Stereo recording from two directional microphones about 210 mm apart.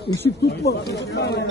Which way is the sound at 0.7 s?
50° left (ahead or behind).